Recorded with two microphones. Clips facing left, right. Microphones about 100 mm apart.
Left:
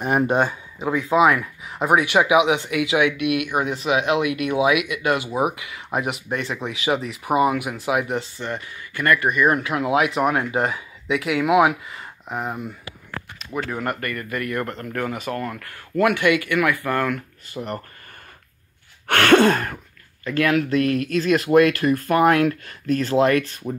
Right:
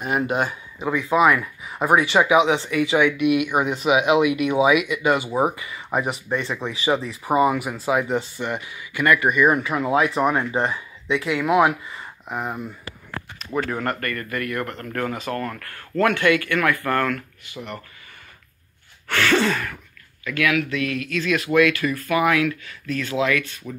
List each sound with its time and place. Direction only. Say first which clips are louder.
0.0 s speech: left 3 dB; 40° left (ahead or behind)
1.1 s speech: left 1 dB; centre (ahead or behind)
1.9 s speech: even; 10° left (ahead or behind)
8.2 s speech: right 1 dB; 10° right (ahead or behind); by 17.2 s 15° left (ahead or behind)
17.5 s speech: left 5 dB; 40° left (ahead or behind)
19.0 s a sound: left 5 dB; 60° left (ahead or behind)
20.2 s speech: left 2 dB; 35° left (ahead or behind)